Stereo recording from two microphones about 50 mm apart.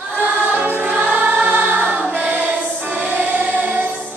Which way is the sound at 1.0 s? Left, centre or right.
Right.